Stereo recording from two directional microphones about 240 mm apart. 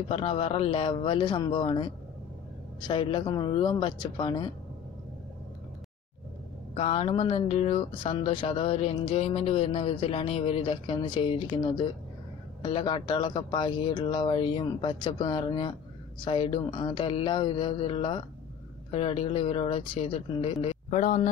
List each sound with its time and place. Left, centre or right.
0.1 s speech: left
6.7 s speech: left